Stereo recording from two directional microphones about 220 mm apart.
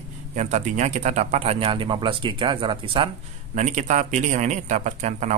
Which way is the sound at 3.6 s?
35° right (ahead or behind).